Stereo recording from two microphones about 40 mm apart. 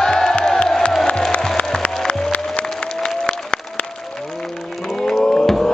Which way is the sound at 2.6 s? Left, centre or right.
Centre.